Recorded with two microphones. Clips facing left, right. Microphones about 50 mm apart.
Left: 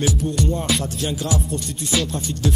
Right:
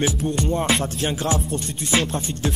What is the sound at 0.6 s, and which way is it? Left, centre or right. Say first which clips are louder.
Music: right 2 dB; right.